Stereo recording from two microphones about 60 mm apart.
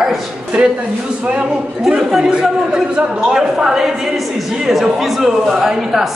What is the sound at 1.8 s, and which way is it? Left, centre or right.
A man's voice, centre.